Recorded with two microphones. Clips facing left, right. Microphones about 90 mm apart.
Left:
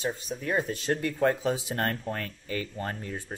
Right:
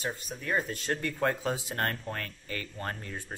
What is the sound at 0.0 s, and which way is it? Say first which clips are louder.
Speech: left 4 dB; 15° left (ahead or behind).